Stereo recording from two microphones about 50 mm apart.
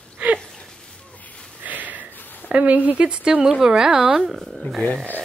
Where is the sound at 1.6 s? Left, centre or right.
Right.